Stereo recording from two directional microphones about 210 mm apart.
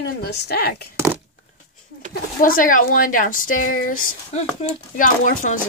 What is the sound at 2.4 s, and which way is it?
Speech, 40° left (ahead or behind).